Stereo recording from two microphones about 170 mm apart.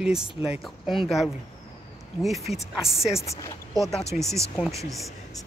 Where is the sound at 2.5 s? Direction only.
Centre (ahead or behind).